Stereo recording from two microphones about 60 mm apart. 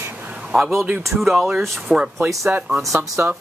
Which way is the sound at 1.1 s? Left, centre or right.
Centre.